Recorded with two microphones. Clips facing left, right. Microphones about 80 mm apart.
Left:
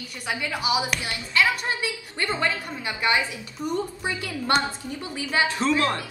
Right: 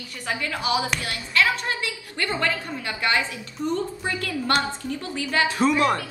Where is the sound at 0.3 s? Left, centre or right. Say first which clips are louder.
Right 1 dB; centre.